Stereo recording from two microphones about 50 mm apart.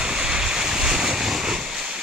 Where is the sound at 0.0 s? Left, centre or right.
Centre.